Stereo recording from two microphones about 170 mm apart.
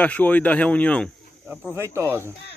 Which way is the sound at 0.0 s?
10° left (ahead or behind).